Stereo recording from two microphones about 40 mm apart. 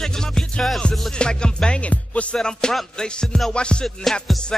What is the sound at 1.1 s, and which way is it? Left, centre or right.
Speech, left.